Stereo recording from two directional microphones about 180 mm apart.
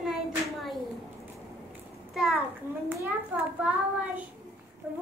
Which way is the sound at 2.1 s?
5° right (ahead or behind).